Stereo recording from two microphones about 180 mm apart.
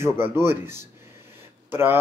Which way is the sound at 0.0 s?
15° right (ahead or behind).